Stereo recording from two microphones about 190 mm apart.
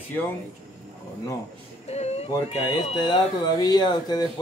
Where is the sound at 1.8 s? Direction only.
35° left (ahead or behind).